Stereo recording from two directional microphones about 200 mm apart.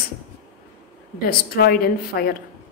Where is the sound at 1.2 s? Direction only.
50° left (ahead or behind).